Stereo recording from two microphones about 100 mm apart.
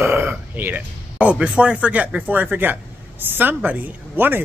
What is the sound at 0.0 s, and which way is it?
A man's voice, 20° right (ahead or behind).